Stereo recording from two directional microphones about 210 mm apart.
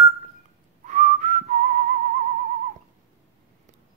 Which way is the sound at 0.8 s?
35° right (ahead or behind).